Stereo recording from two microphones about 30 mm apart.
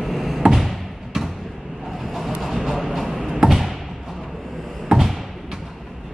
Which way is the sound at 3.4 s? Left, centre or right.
Right.